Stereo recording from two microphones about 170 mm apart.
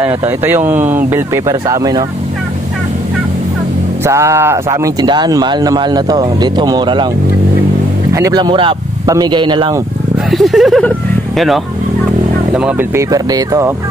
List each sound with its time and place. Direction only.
0.0 s speech: 15° right (ahead or behind)
4.0 s speech: 15° right (ahead or behind)
8.1 s speech: 20° right (ahead or behind)
10.3 s speech: centre (ahead or behind); by 13.7 s 20° right (ahead or behind)